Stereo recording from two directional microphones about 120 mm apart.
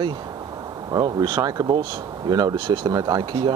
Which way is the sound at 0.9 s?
30° right (ahead or behind).